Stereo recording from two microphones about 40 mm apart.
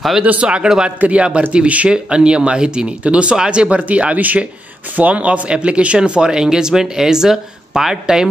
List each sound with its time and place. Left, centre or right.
0.2 s speech: right
1.0 s speech: right
1.5 s speech: right; by 8.3 s centre